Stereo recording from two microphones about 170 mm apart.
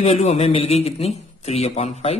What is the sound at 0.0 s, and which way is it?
Speech, 40° left (ahead or behind).